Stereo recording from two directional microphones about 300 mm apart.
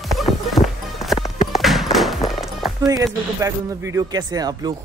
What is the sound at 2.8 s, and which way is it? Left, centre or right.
Speech, centre.